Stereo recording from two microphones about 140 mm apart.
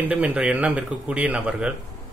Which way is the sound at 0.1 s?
10° right (ahead or behind).